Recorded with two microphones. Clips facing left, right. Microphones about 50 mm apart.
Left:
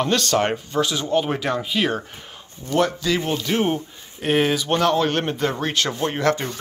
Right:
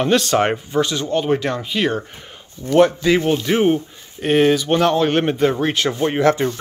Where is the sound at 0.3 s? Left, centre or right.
Centre.